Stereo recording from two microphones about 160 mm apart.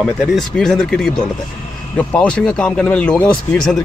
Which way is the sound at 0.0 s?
Centre (ahead or behind).